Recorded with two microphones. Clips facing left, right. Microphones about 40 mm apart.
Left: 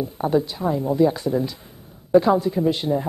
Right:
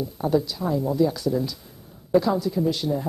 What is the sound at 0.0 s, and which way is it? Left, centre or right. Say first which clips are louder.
Speech: left 2 dB; left.